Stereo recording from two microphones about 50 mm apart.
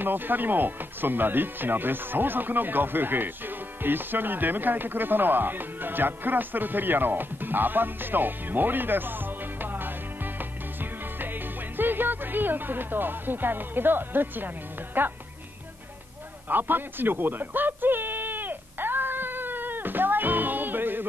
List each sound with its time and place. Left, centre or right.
0.0 s speech: right
11.7 s speech: right
16.4 s a sound: right